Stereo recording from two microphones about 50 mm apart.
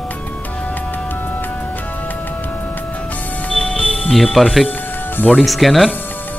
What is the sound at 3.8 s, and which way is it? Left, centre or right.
Speech, centre.